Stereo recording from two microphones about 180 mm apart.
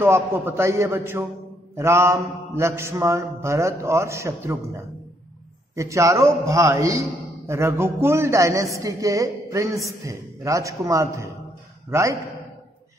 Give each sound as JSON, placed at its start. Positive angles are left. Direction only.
{"t": 0.0, "sound": "mantra", "side_deg": -10}
{"t": 5.8, "sound": "mantra", "side_deg": -15}